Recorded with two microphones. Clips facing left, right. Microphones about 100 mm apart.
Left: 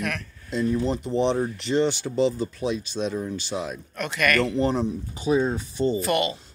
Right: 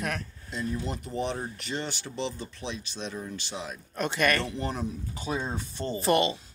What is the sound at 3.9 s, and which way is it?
Speech, 30° right (ahead or behind).